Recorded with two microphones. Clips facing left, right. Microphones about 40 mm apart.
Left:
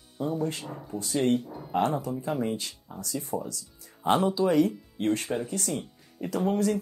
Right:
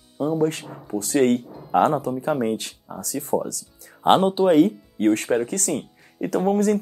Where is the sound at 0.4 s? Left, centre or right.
Right.